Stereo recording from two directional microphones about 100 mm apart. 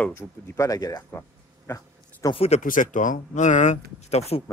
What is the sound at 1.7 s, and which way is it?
Speech, 25° left (ahead or behind).